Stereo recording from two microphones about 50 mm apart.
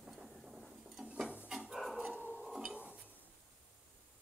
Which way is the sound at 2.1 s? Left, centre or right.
Left.